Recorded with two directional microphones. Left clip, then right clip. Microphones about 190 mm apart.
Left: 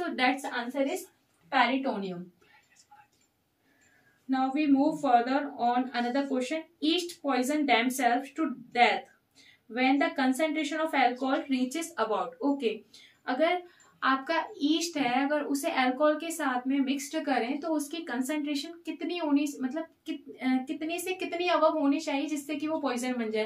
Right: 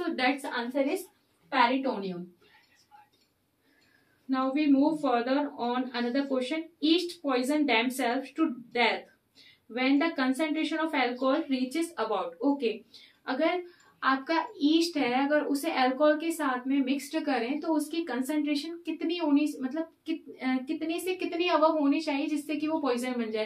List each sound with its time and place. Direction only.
1.5 s a woman's voice: 20° left (ahead or behind)
4.3 s a child's voice: 15° left (ahead or behind)